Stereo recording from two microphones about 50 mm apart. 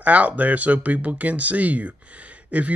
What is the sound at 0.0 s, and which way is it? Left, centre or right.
Speech, right.